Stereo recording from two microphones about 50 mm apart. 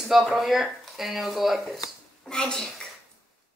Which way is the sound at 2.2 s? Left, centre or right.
Centre.